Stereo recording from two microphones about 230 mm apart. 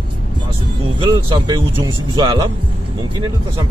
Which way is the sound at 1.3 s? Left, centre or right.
Centre.